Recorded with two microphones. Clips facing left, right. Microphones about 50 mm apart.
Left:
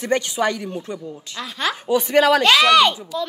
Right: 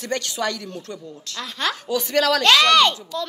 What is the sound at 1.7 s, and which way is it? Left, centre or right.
A woman's voice, centre.